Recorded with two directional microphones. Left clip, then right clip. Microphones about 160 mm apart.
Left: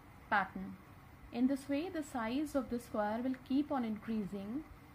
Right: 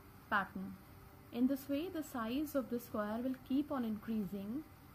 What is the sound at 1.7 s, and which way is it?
A woman's voice, 10° right (ahead or behind).